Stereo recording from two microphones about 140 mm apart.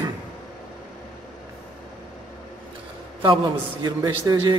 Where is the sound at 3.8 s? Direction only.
30° right (ahead or behind).